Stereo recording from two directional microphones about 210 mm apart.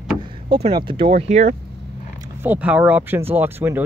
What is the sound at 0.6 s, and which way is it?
Speech, 25° right (ahead or behind).